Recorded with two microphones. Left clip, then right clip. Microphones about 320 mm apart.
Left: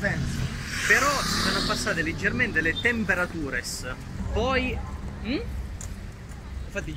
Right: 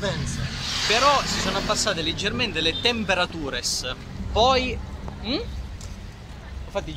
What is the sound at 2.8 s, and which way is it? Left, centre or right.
Speech, centre.